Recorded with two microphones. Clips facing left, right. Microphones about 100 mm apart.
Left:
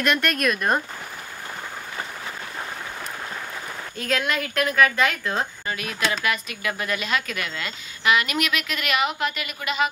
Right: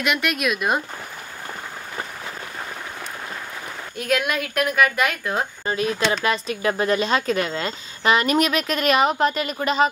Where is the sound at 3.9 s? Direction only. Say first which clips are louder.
Right 3 dB; 10° right (ahead or behind).